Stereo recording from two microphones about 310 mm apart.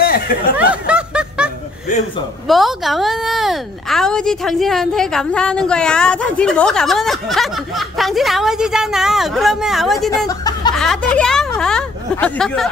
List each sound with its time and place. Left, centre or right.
0.0 s a sound: left
0.8 s snicker: centre
2.4 s a woman's voice: centre
10.2 s chuckle: centre
10.9 s speech: centre